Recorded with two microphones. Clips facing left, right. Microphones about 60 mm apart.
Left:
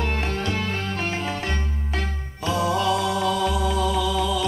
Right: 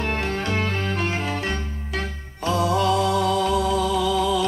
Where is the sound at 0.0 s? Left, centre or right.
Right.